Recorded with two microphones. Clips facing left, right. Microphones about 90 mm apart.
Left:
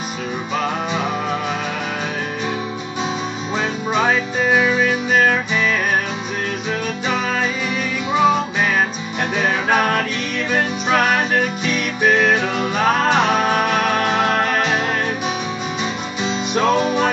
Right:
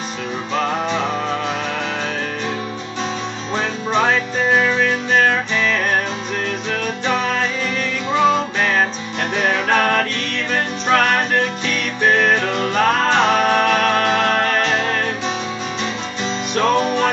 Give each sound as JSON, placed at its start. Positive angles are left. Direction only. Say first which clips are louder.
{"t": 3.5, "sound": "music", "louder": "right 1 dB", "side_deg": 5}
{"t": 16.5, "sound": "music", "louder": "even", "side_deg": 10}